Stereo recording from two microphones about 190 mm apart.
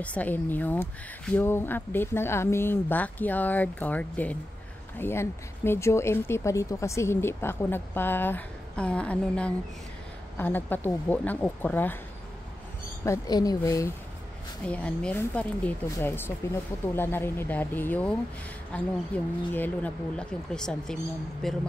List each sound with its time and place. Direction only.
0.0 s speech: 10° left (ahead or behind)
13.0 s speech: 15° left (ahead or behind)